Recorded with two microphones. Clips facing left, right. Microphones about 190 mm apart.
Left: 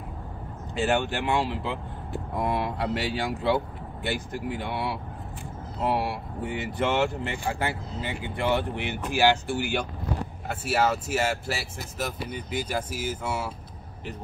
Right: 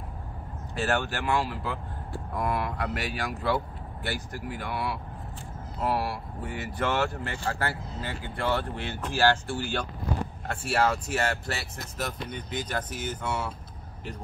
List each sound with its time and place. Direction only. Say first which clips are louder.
0.7 s speech: left 3 dB; 20° left (ahead or behind)